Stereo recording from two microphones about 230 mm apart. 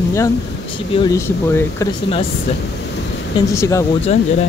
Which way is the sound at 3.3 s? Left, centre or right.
Centre.